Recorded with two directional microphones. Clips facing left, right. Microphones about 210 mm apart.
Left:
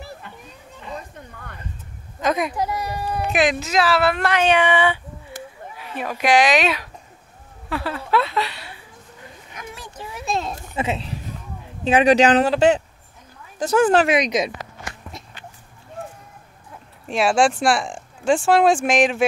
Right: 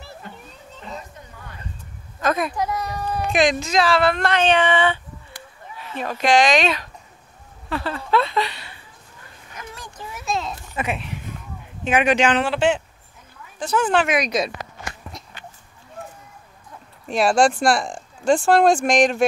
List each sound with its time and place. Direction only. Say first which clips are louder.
1.3 s vehicle: left 1 dB; 55° left (ahead or behind)
2.1 s speech: even; 15° left (ahead or behind)
2.6 s a child's voice: even; 30° left (ahead or behind)
3.1 s speech: right 1 dB; 5° left (ahead or behind)
7.7 s a sound: even; 10° left (ahead or behind)
9.9 s a sound: left 1 dB; 30° left (ahead or behind)
10.7 s a man's voice: left 2 dB; 25° left (ahead or behind)
14.1 s speech: left 2 dB; 20° left (ahead or behind)
17.0 s speech: right 1 dB; centre (ahead or behind)